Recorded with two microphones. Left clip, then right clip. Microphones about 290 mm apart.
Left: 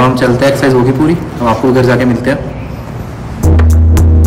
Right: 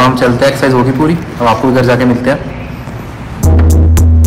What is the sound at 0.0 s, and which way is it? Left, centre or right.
A man's voice, centre.